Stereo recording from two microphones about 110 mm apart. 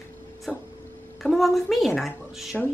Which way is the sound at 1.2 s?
Centre (ahead or behind).